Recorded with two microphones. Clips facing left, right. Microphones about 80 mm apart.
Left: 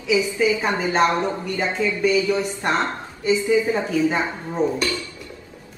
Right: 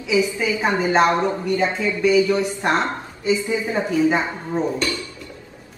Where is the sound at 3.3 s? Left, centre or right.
Right.